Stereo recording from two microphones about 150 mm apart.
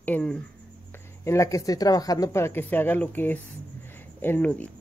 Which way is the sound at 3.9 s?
15° left (ahead or behind).